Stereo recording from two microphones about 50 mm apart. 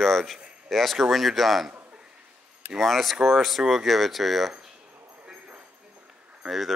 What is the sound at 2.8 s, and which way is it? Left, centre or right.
Speech, centre.